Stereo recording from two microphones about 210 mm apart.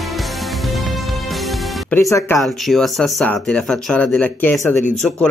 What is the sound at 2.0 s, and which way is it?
Speech, 15° left (ahead or behind).